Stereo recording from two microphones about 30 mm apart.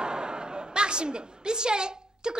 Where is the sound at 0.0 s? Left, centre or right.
Right.